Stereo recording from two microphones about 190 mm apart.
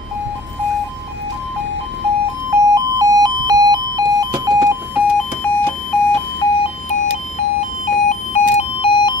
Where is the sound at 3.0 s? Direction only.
20° right (ahead or behind).